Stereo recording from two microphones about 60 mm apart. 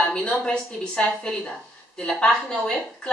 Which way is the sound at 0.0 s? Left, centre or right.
Centre.